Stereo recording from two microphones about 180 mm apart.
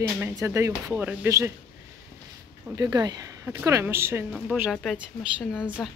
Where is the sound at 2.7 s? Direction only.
20° right (ahead or behind); by 5.8 s 5° right (ahead or behind).